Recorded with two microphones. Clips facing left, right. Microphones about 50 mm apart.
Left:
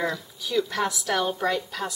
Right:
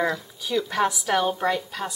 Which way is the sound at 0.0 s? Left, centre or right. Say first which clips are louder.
Right 3 dB; centre.